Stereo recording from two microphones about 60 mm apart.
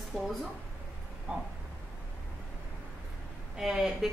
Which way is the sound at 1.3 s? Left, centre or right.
Right.